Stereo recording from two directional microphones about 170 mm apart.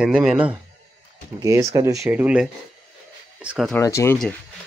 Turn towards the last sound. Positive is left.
turn(degrees=15)  # may be behind; listen again after turning